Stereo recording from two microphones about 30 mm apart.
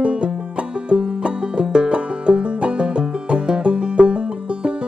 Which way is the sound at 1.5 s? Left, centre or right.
Right.